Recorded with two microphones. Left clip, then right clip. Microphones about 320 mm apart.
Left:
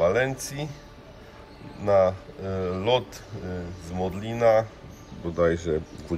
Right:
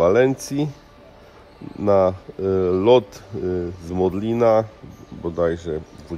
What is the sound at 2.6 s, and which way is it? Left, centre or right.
Speech, right.